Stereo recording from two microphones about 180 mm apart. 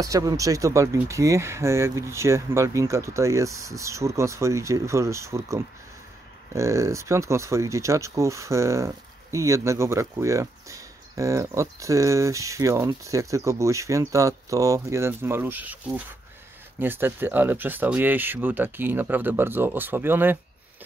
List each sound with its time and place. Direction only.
0.0 s speech: 20° right (ahead or behind)
16.8 s speech: 10° right (ahead or behind)